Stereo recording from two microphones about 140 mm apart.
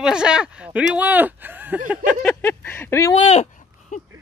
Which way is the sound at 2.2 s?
10° left (ahead or behind).